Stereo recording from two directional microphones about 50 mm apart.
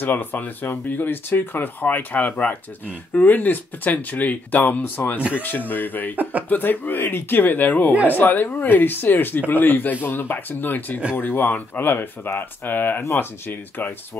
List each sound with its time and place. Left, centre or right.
0.0 s speech: left
13.0 s speech: left
13.5 s speech: left